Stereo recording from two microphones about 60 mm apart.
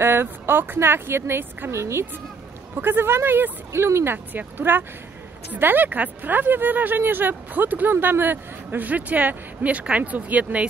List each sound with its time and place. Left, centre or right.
0.0 s speech: right
2.7 s speech: right